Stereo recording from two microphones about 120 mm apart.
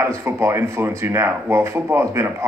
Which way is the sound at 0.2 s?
20° right (ahead or behind).